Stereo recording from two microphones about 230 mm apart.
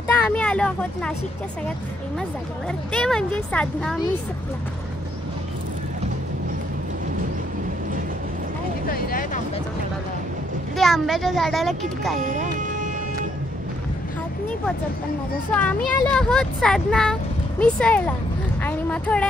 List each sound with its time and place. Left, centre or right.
0.3 s speech: centre
2.9 s speech: centre
8.8 s vehicle: left
10.8 s speech: centre
12.2 s speech: right
15.5 s speech: centre